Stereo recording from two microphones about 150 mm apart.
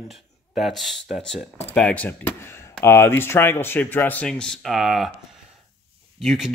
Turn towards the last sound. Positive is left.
turn(degrees=0)  # may be behind; listen again after turning